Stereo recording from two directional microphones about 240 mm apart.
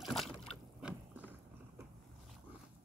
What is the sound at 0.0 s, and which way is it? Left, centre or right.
Boat, centre.